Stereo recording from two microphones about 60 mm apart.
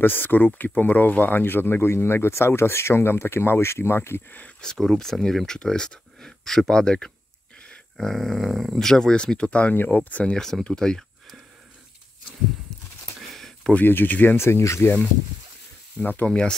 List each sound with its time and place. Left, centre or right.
0.0 s speech: left
4.6 s speech: centre
8.0 s a sound: centre
8.7 s speech: centre
9.8 s speech: left
10.3 s speech: centre
13.7 s speech: left
14.4 s speech: left
16.0 s speech: left
16.3 s speech: centre